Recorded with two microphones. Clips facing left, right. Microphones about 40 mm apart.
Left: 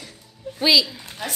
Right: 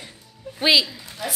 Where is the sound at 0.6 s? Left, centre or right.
Centre.